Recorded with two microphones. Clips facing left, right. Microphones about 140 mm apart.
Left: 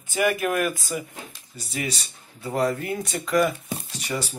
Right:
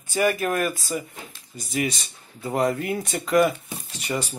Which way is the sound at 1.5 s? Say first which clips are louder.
Right 4 dB; 35° left (ahead or behind).